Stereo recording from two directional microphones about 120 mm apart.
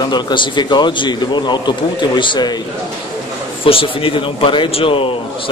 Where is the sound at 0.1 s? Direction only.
40° left (ahead or behind).